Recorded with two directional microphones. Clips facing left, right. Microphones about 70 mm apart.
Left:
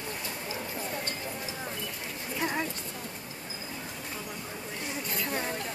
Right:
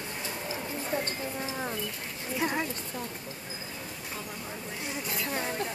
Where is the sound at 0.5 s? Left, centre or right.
Right.